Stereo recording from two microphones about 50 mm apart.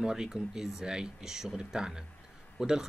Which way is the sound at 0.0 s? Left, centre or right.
Centre.